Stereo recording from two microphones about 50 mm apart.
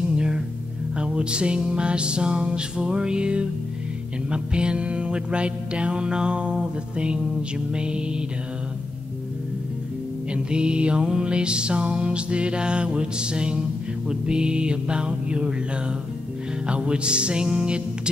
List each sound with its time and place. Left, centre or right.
0.1 s music: centre
10.3 s music: centre
16.6 s music: right